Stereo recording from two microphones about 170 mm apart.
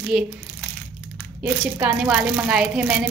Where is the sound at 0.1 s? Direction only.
Centre (ahead or behind).